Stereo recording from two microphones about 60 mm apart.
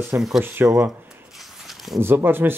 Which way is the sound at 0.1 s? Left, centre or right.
Right.